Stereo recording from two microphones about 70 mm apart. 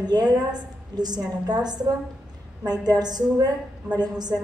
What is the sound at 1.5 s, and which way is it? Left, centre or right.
A woman's voice, right.